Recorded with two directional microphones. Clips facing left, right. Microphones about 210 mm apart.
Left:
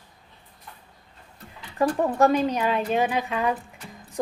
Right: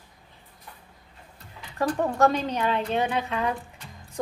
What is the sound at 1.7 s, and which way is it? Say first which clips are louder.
A woman's voice: left 3 dB; 15° left (ahead or behind).